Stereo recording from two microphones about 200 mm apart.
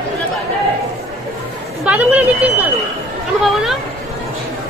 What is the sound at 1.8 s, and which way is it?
A woman's voice, 5° right (ahead or behind).